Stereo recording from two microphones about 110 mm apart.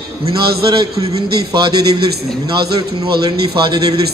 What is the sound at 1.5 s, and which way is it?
Speech, 40° right (ahead or behind).